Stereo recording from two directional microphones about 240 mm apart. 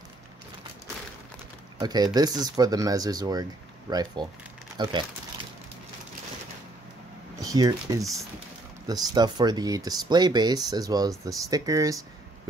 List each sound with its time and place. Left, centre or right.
1.8 s speech: centre
7.3 s speech: centre